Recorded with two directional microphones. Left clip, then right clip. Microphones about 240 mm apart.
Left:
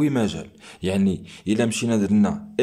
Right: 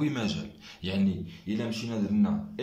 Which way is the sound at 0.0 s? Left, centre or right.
Left.